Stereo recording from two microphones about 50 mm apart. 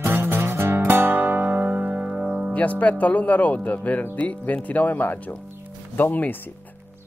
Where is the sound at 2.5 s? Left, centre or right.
Left.